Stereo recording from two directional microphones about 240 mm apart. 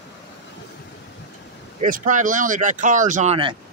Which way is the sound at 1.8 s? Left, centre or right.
Right.